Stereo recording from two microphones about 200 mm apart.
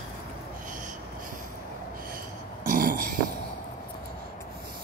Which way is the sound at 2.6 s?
45° right (ahead or behind).